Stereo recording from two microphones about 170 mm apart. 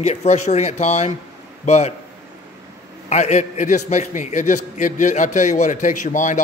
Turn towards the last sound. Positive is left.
turn(degrees=50)  # may be behind; listen again after turning